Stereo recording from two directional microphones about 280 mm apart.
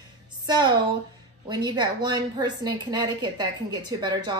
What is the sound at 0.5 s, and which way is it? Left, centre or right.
A woman's voice, centre.